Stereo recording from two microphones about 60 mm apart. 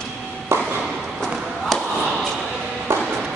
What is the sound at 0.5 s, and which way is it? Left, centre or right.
Ping, right.